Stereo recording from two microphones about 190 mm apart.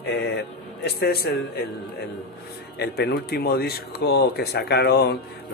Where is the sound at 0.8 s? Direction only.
55° left (ahead or behind).